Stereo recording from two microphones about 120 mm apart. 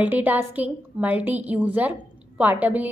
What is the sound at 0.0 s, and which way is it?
A woman's voice, 15° right (ahead or behind).